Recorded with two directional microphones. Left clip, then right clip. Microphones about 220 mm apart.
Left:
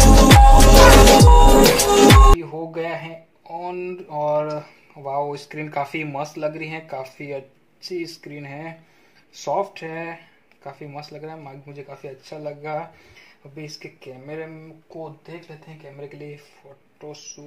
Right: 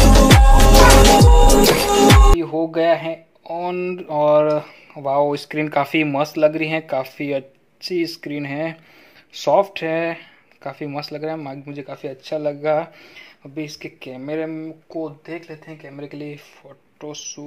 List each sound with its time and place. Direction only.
0.3 s music: centre (ahead or behind)
2.4 s speech: 40° right (ahead or behind)